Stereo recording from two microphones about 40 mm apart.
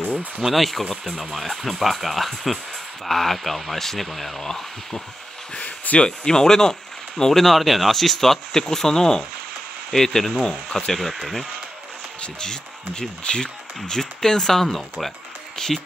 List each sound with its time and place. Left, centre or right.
0.4 s speech: centre
4.4 s speech: centre
5.5 s a sound: left
6.0 s speech: centre
11.0 s speech: centre
12.2 s speech: centre